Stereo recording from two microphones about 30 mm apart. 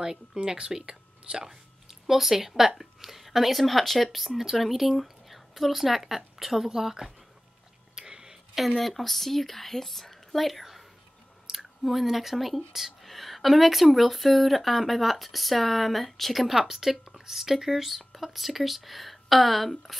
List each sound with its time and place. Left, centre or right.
0.0 s a woman's voice: right
7.9 s a sound: right
8.5 s speech: centre
16.5 s speech: centre